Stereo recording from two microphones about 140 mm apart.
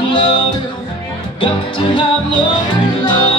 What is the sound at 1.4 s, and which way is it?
Music, 35° left (ahead or behind).